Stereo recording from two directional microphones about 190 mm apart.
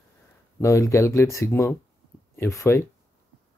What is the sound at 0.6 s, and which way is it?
Speech, 15° left (ahead or behind).